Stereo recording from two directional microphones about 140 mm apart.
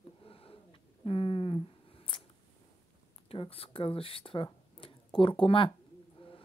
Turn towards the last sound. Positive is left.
turn(degrees=40)  # may be behind; listen again after turning